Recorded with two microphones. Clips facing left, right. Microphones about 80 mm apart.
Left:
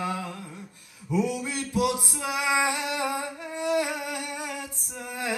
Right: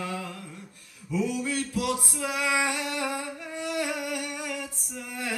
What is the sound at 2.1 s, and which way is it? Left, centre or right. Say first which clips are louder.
Female singing: left 1 dB; centre.